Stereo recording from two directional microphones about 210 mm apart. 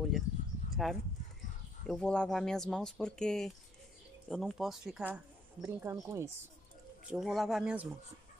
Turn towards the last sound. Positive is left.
turn(degrees=-5)  # may be behind; listen again after turning